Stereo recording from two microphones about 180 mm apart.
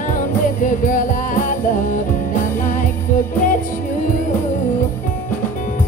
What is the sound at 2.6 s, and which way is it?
Music, 45° left (ahead or behind).